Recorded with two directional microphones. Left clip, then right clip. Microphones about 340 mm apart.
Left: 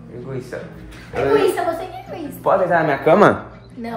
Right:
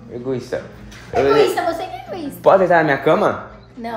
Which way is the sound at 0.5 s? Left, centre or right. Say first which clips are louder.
Right 5 dB; right.